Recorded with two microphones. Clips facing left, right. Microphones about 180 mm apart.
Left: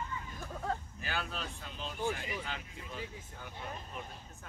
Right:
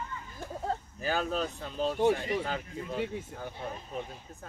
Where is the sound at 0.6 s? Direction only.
35° right (ahead or behind).